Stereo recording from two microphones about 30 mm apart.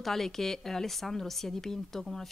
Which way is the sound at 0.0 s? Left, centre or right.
Centre.